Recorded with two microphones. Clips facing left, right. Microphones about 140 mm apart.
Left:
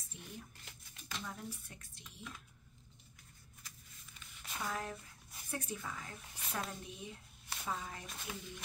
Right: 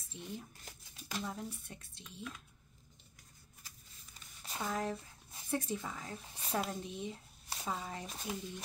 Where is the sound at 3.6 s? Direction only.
40° right (ahead or behind).